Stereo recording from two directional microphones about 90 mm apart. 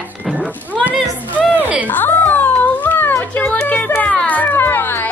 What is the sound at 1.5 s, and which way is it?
Music, 15° right (ahead or behind).